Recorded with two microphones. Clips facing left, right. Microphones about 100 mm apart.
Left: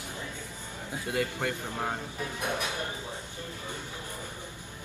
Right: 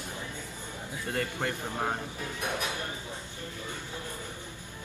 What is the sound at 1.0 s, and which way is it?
Speech, 15° left (ahead or behind).